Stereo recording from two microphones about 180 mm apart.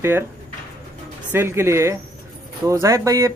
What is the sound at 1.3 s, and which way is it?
Speech, 15° right (ahead or behind).